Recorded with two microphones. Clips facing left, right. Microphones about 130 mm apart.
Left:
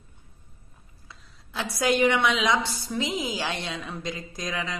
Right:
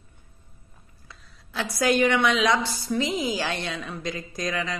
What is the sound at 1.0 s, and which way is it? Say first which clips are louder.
A woman's voice: even; 20° left (ahead or behind).